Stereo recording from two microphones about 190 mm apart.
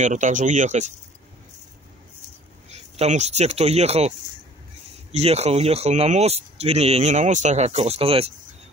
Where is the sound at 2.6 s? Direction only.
35° right (ahead or behind).